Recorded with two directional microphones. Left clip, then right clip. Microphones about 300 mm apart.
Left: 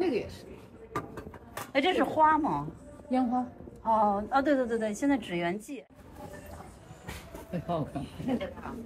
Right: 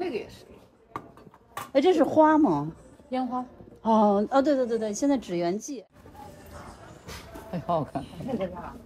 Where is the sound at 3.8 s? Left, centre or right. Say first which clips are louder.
Right 4 dB; right.